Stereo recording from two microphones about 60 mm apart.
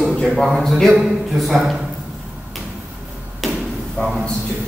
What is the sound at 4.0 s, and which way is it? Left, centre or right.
Speech, centre.